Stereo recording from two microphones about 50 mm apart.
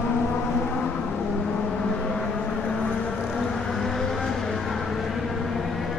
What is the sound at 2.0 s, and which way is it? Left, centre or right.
Vehicle, centre.